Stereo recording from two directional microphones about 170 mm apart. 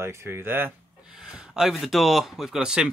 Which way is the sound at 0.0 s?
15° right (ahead or behind).